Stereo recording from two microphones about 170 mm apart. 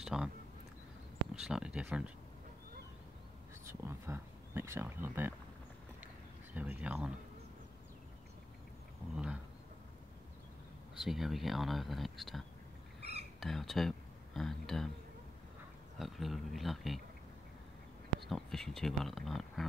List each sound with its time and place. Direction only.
0.0 s speech: centre (ahead or behind)
1.4 s speech: 5° right (ahead or behind)
3.6 s speech: 15° right (ahead or behind)
6.5 s speech: 10° right (ahead or behind)
9.1 s speech: 5° right (ahead or behind)
11.0 s speech: centre (ahead or behind)
13.0 s a sound: 35° right (ahead or behind)
13.4 s speech: centre (ahead or behind)
16.0 s speech: centre (ahead or behind)
18.3 s speech: 5° left (ahead or behind)